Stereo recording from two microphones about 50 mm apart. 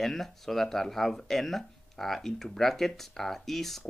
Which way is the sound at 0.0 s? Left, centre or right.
Centre.